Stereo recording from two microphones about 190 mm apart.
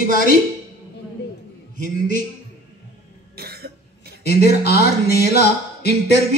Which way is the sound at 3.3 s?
55° right (ahead or behind).